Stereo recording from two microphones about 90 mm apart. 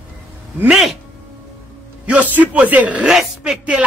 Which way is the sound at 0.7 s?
Centre (ahead or behind).